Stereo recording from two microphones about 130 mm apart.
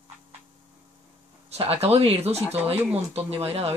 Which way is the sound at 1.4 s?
50° right (ahead or behind).